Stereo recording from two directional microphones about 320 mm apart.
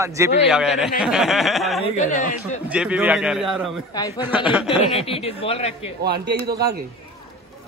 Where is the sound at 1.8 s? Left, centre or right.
Left.